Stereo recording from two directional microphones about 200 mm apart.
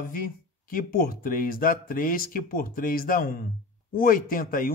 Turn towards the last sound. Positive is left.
turn(degrees=45)  # may be behind; listen again after turning